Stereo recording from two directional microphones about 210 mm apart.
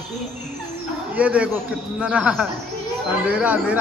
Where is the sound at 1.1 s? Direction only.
5° right (ahead or behind).